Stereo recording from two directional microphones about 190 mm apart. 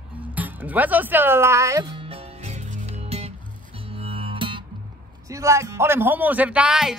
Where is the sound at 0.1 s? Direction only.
10° right (ahead or behind); by 4.6 s 25° right (ahead or behind).